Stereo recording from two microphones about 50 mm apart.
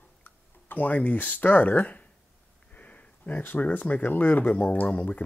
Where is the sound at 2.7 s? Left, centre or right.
Left.